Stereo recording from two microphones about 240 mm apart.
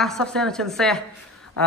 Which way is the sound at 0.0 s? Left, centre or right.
Centre.